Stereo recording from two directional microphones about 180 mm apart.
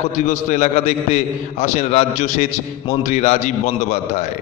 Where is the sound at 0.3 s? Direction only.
40° left (ahead or behind).